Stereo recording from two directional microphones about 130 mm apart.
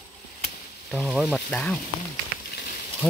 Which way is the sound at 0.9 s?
Centre (ahead or behind).